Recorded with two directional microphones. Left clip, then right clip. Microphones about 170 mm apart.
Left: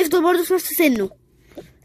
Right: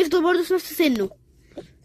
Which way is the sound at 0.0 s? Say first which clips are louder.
Left 2 dB; 10° left (ahead or behind).